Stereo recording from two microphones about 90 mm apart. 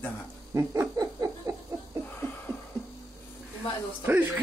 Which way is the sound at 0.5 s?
30° right (ahead or behind).